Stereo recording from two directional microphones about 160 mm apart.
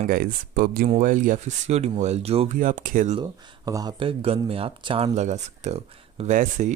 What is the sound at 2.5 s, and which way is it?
Speech, 55° right (ahead or behind).